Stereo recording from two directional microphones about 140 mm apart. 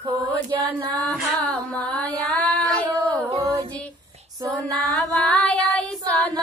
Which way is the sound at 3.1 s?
20° right (ahead or behind).